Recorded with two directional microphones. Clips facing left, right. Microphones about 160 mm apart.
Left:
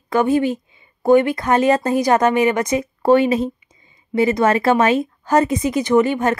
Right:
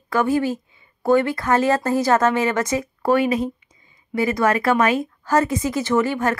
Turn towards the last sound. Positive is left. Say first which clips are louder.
# left 4 dB
turn(degrees=20)  # may be behind; listen again after turning